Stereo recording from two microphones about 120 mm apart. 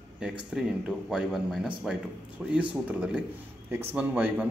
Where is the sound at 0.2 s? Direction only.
5° right (ahead or behind).